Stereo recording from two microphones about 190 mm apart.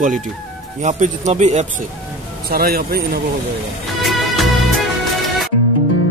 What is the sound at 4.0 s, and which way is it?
Music, centre (ahead or behind).